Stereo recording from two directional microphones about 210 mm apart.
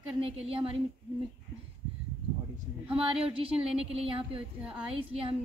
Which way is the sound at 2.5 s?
25° right (ahead or behind).